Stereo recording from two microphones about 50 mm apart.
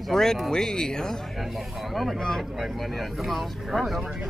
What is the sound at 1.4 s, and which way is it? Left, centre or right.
Speech, centre.